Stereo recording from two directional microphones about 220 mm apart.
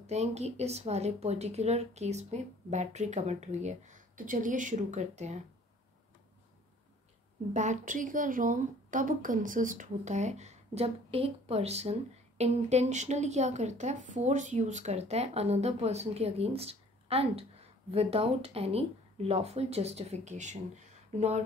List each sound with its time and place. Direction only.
0.0 s speech: 30° right (ahead or behind)
7.5 s a woman's voice: 35° right (ahead or behind)